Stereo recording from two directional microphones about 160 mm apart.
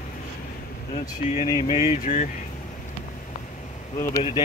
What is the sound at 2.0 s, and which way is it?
Speech, 45° left (ahead or behind).